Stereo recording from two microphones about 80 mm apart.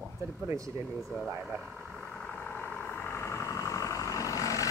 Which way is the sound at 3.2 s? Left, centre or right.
Left.